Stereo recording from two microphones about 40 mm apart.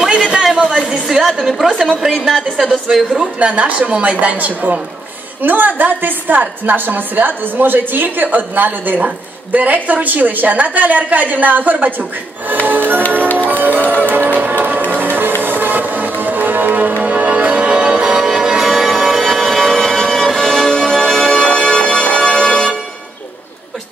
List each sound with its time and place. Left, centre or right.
0.0 s a sound: centre
1.0 s a woman's voice: centre
2.9 s a woman's voice: centre
3.3 s a woman's voice: right
13.5 s music: right
18.0 s change ringing: centre
18.7 s music: centre
21.6 s organ: centre